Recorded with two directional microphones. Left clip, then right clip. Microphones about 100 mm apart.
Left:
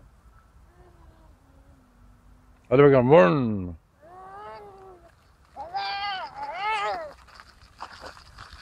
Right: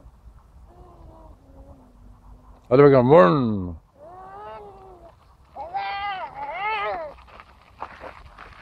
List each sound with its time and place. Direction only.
2.7 s a man's voice: 45° right (ahead or behind)
4.2 s a sound: 15° left (ahead or behind)
5.5 s sheep: 15° left (ahead or behind)